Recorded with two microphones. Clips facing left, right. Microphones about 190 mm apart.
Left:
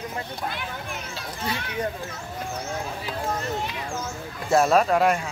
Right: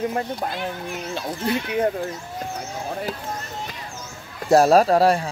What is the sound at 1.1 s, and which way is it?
Speech, 55° right (ahead or behind).